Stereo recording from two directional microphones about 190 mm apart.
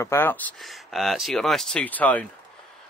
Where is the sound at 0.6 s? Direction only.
Centre (ahead or behind).